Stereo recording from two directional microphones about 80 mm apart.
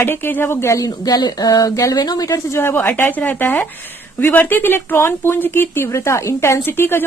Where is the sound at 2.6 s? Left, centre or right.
Left.